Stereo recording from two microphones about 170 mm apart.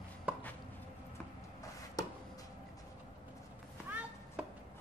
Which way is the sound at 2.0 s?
20° left (ahead or behind).